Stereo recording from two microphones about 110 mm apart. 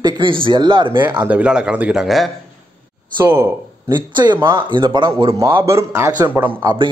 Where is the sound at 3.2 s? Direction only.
25° right (ahead or behind).